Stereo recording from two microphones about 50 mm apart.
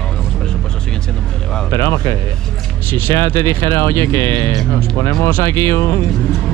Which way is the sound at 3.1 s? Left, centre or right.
Left.